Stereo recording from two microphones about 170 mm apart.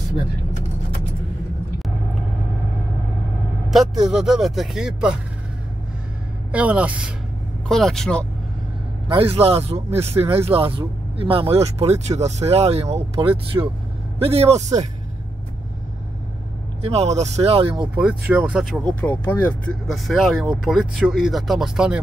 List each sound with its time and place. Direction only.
4.1 s speech: 5° right (ahead or behind)
6.5 s speech: 10° right (ahead or behind)
7.6 s speech: centre (ahead or behind)
9.1 s a man's voice: 35° right (ahead or behind)
16.8 s speech: 40° right (ahead or behind)
17.9 s speech: 5° right (ahead or behind)
18.9 s speech: 10° left (ahead or behind)
19.9 s speech: centre (ahead or behind)